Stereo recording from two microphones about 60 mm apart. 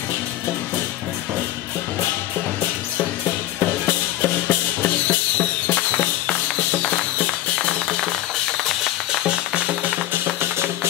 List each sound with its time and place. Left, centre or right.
3.5 s music: left
8.6 s music: centre
9.2 s music: centre
10.4 s music: right